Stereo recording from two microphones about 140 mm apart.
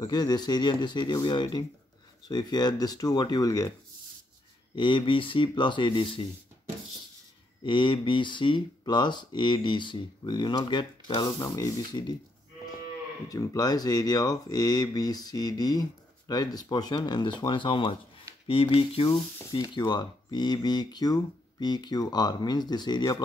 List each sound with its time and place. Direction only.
0.0 s speech: 30° left (ahead or behind)
4.7 s speech: 35° left (ahead or behind)
7.6 s speech: 35° left (ahead or behind)
13.3 s speech: 25° left (ahead or behind)